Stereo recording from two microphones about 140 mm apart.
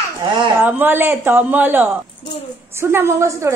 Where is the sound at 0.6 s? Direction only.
15° right (ahead or behind).